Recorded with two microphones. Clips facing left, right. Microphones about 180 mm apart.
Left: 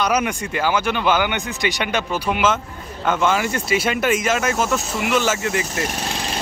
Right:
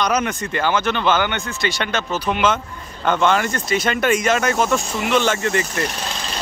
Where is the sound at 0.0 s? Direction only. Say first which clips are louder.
Even; 10° left (ahead or behind).